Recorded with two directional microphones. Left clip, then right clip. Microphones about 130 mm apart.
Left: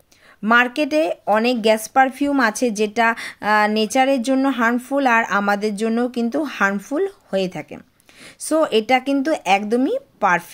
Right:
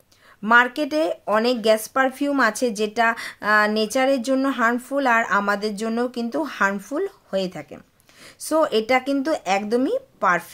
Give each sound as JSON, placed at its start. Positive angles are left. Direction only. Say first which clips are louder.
{"t": 0.4, "sound": "speech", "louder": "left 1 dB", "side_deg": 20}